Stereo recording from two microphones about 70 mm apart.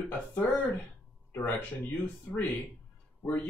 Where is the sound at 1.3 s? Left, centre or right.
Left.